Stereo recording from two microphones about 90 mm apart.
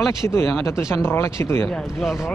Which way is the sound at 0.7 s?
35° left (ahead or behind).